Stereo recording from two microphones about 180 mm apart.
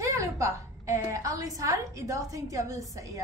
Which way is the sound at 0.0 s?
15° right (ahead or behind).